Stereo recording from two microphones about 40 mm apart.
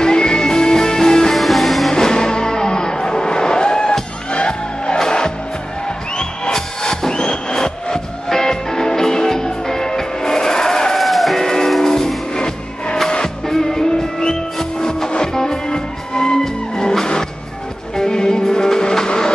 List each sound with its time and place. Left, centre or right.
0.0 s music: centre
1.3 s music: centre
2.0 s music: centre
6.5 s music: centre
11.0 s music: centre
11.3 s music: centre